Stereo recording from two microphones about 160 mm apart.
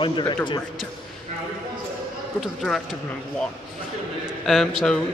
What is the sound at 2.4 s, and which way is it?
Speech, centre (ahead or behind).